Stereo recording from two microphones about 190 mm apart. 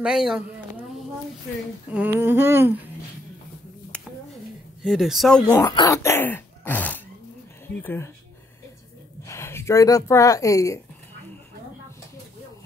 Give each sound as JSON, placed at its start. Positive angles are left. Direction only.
{"t": 0.0, "sound": "speech", "side_deg": -5}
{"t": 1.9, "sound": "a sound", "side_deg": -10}
{"t": 3.9, "sound": "a sound", "side_deg": 5}
{"t": 4.8, "sound": "speech", "side_deg": 0}
{"t": 5.7, "sound": "speech", "side_deg": 20}
{"t": 9.2, "sound": "speech", "side_deg": 15}